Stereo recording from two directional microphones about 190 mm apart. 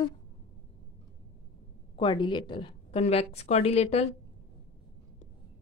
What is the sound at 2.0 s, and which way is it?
A woman's voice, 25° left (ahead or behind).